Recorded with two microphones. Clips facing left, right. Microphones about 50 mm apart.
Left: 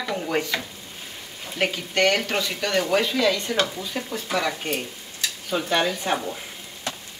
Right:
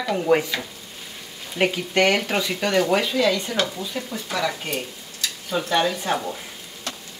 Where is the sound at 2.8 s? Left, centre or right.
Centre.